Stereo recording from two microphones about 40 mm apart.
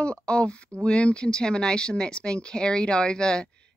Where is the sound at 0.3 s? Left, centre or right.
Left.